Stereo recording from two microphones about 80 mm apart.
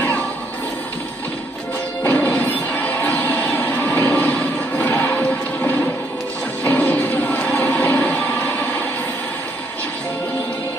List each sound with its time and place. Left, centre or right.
2.0 s music: left